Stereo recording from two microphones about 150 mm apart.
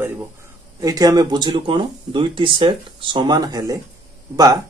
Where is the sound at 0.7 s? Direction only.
25° right (ahead or behind).